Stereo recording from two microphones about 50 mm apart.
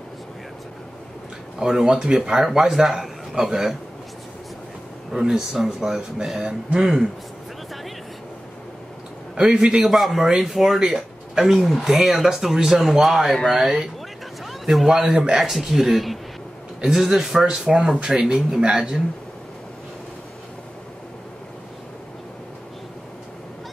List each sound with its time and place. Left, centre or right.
1.6 s a man's voice: centre
5.1 s speech: centre
9.4 s speech: centre
9.8 s speech: centre
14.4 s a sound: centre
14.9 s speech: centre